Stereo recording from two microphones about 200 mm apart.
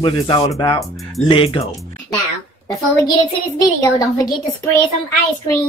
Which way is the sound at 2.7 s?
15° left (ahead or behind).